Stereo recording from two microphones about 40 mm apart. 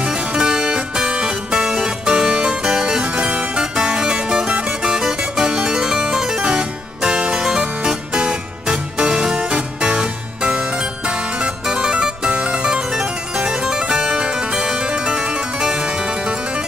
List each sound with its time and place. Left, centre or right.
0.4 s music: centre